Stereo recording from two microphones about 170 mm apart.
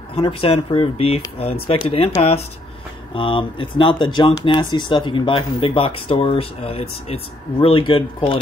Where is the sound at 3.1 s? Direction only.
30° left (ahead or behind).